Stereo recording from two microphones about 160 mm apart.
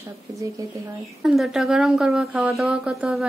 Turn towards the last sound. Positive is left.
turn(degrees=-5)  # may be behind; listen again after turning